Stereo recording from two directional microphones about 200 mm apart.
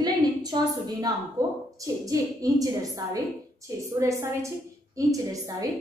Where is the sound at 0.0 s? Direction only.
20° right (ahead or behind).